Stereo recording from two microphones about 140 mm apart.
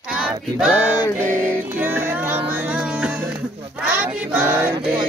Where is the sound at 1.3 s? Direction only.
15° right (ahead or behind).